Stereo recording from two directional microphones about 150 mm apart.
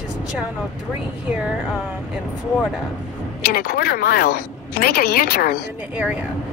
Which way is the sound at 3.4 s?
90° left.